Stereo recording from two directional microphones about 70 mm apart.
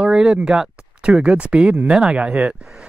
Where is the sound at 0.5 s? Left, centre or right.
Centre.